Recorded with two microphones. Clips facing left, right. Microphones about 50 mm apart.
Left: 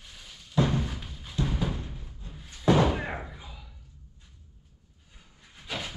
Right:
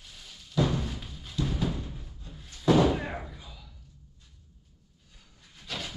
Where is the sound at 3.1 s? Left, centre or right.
Left.